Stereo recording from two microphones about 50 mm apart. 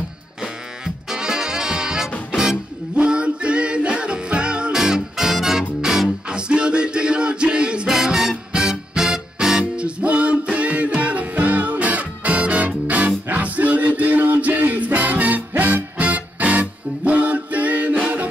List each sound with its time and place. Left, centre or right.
0.4 s music: centre; by 18.0 s right